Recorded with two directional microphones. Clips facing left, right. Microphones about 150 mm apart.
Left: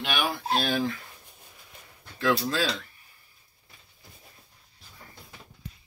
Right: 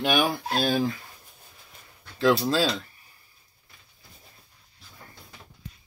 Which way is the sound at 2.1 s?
30° right (ahead or behind).